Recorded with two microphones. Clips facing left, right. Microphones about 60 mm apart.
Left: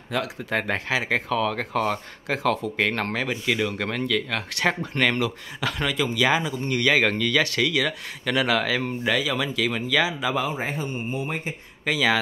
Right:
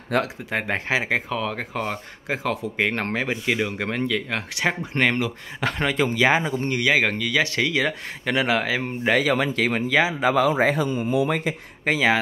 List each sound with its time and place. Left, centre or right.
0.1 s speech: right
0.5 s a man's voice: centre; by 6.6 s right
6.7 s a man's voice: centre
7.4 s speech: right
9.0 s speech: right
10.3 s a man's voice: right
11.8 s speech: right